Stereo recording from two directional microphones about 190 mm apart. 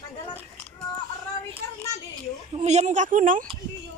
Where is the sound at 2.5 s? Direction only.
35° right (ahead or behind).